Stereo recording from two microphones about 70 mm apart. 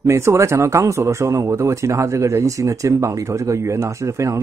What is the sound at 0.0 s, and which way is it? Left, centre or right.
Speech, right.